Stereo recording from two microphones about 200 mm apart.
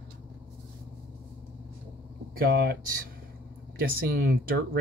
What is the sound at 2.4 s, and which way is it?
Speech, 50° right (ahead or behind).